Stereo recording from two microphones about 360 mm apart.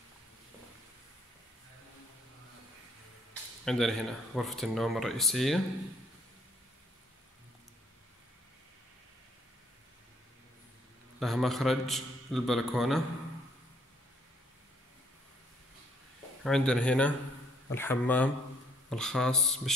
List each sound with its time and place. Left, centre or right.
3.6 s speech: centre
11.1 s speech: centre
16.4 s speech: centre